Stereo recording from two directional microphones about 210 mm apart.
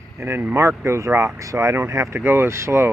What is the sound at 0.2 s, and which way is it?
Speech, 10° right (ahead or behind).